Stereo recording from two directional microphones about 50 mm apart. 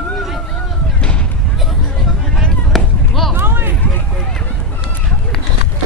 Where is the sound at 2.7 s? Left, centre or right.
Centre.